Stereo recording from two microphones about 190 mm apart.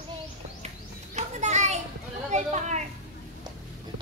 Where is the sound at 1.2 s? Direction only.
40° right (ahead or behind).